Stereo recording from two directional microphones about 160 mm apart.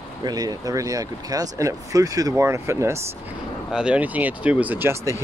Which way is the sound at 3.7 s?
5° right (ahead or behind).